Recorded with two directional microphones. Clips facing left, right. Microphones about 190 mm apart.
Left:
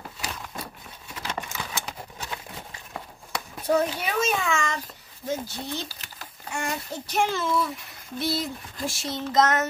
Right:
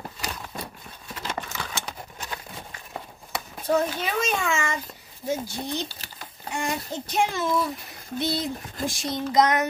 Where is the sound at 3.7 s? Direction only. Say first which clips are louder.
Even; 10° left (ahead or behind); by 4.8 s 5° right (ahead or behind).